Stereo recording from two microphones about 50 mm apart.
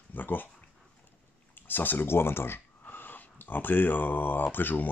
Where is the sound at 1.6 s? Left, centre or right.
Left.